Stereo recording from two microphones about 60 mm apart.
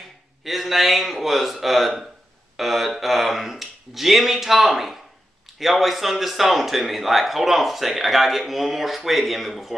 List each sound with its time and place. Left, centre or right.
0.5 s speech: centre